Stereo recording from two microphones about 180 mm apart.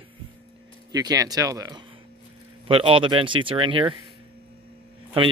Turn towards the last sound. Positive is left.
turn(degrees=-30)  # may be behind; listen again after turning